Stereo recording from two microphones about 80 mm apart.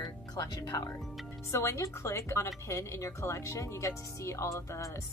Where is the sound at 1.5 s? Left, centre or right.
Left.